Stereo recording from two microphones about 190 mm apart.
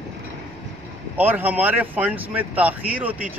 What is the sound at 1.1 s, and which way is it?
Speech, 10° right (ahead or behind).